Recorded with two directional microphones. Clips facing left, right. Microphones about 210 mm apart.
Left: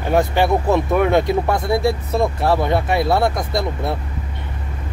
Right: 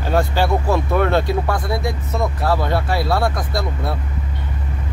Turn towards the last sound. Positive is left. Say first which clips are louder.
# left 2 dB
turn(degrees=25)  # may be behind; listen again after turning